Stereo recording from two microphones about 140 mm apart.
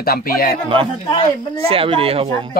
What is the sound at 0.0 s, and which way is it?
Speech, 90° left.